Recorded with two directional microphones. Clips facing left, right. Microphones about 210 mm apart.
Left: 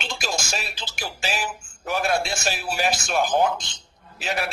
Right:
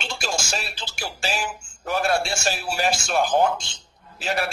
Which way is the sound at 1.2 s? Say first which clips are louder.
Right 1 dB; 10° left (ahead or behind).